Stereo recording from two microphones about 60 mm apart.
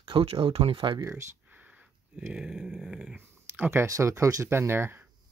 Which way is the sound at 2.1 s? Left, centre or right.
Right.